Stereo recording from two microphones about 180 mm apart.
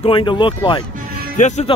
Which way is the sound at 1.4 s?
40° left (ahead or behind).